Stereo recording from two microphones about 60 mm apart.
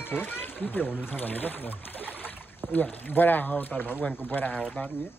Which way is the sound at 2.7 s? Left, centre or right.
Left.